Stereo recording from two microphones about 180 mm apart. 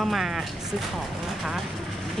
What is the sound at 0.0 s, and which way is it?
Speech, centre (ahead or behind).